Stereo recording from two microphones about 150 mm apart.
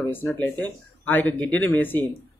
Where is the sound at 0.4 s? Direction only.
10° left (ahead or behind).